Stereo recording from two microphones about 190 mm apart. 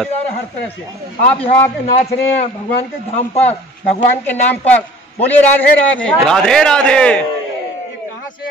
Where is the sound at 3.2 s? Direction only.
35° left (ahead or behind).